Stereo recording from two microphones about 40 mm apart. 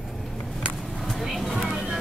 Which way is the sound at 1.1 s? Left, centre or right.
Centre.